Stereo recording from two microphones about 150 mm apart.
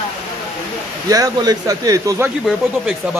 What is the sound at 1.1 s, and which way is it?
Speech, 25° right (ahead or behind).